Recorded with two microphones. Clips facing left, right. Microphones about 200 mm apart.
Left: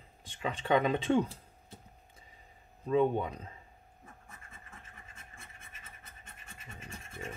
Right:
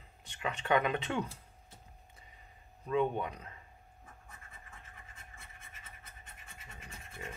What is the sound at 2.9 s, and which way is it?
Speech, 35° left (ahead or behind).